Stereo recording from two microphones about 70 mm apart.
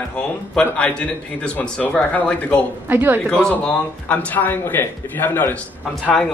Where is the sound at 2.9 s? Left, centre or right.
Right.